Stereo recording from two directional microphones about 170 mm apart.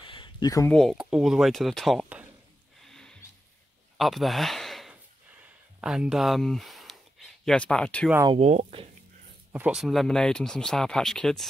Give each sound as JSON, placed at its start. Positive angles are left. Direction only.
{"t": 0.0, "sound": "a sound", "side_deg": 30}
{"t": 0.7, "sound": "speech", "side_deg": 0}
{"t": 2.8, "sound": "music", "side_deg": 5}
{"t": 4.0, "sound": "speech", "side_deg": 0}
{"t": 5.4, "sound": "a sound", "side_deg": -5}
{"t": 8.4, "sound": "speech", "side_deg": -45}
{"t": 9.5, "sound": "speech", "side_deg": -5}